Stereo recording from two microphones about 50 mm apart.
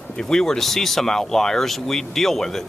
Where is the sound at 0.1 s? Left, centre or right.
Centre.